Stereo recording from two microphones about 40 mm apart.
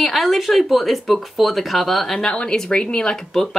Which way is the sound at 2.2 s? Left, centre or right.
Left.